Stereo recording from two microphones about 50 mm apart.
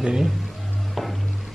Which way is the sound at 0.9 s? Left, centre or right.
Centre.